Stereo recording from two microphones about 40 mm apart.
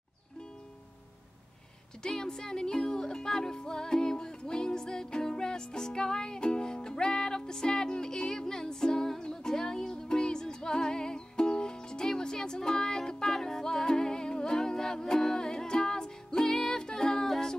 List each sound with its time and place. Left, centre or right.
2.0 s music: centre